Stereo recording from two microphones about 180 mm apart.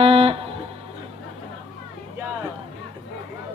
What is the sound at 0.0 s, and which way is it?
Music, 35° right (ahead or behind).